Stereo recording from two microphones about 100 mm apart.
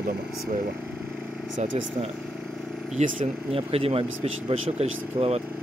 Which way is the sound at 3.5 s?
75° right (ahead or behind).